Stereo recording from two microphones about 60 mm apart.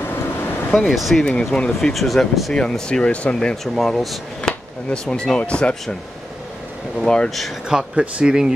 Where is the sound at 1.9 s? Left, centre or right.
Centre.